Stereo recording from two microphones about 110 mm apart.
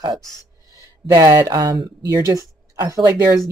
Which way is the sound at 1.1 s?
35° right (ahead or behind).